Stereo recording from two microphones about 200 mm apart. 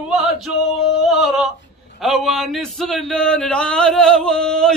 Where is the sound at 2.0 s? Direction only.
Centre (ahead or behind).